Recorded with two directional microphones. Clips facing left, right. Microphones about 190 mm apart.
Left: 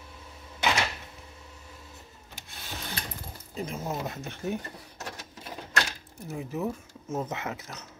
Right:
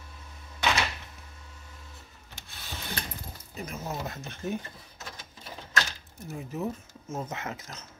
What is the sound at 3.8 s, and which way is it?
Speech, 15° left (ahead or behind).